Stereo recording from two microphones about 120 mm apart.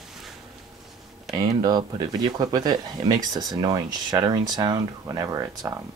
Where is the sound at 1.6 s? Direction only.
35° right (ahead or behind).